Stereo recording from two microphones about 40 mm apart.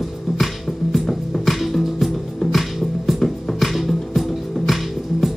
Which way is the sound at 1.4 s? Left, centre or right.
Centre.